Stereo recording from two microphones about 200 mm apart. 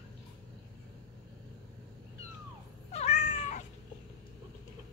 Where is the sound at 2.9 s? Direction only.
35° left (ahead or behind).